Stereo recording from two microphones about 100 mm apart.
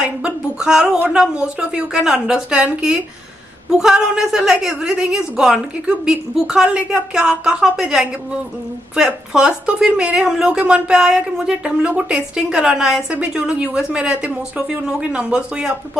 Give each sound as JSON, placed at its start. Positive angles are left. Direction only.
{"t": 0.0, "sound": "speech", "side_deg": -10}